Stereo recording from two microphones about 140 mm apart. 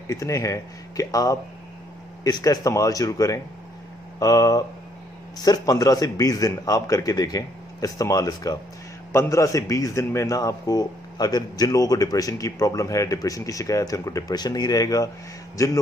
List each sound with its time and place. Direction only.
0.1 s a man's voice: 25° left (ahead or behind)